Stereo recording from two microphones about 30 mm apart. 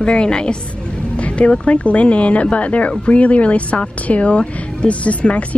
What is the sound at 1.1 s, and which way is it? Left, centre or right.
Music, left.